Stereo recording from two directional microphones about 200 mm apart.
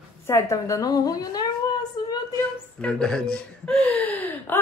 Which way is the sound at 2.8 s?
5° left (ahead or behind).